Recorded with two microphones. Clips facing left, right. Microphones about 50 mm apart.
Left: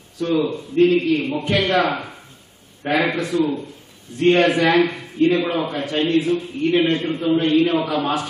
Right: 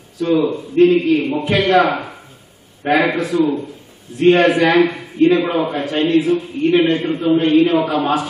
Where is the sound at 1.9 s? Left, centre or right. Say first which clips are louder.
Right 4 dB; centre.